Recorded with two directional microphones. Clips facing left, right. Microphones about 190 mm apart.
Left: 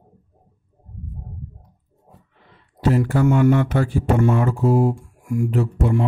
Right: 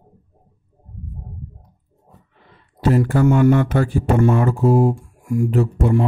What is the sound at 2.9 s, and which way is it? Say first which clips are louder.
Speech: right 2 dB; 40° right (ahead or behind).